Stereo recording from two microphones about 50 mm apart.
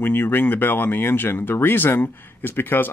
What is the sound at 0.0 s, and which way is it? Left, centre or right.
Speech, left.